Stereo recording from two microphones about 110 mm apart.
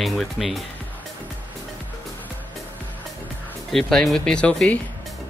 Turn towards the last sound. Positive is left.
turn(degrees=10)  # may be behind; listen again after turning